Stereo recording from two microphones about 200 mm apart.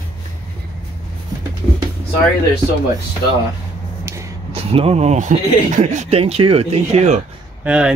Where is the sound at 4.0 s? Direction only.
15° right (ahead or behind).